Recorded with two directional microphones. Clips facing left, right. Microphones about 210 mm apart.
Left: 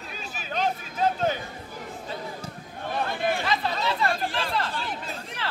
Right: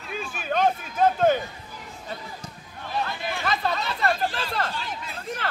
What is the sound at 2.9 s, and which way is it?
Chatter, 50° left (ahead or behind).